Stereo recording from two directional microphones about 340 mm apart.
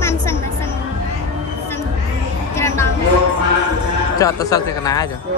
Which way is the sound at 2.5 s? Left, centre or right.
Centre.